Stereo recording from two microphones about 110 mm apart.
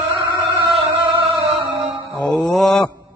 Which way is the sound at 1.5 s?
Centre (ahead or behind).